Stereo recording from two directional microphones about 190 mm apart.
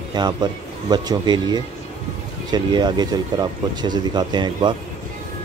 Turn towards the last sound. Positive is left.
turn(degrees=-25)  # may be behind; listen again after turning